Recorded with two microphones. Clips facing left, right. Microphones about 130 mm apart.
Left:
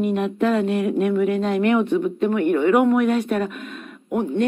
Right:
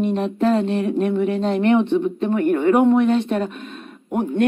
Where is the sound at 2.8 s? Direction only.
25° right (ahead or behind).